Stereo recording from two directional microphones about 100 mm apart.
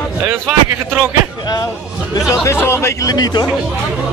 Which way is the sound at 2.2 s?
25° left (ahead or behind).